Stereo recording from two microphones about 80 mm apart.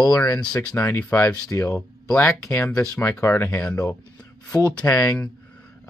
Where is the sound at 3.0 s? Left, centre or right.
Left.